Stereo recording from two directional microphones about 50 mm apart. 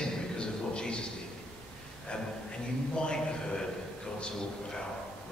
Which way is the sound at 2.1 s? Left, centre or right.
Centre.